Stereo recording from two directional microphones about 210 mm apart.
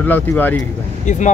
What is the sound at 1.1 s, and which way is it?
Speech, 35° left (ahead or behind).